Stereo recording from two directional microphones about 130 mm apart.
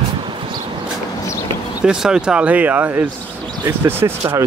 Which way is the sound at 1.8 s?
5° right (ahead or behind).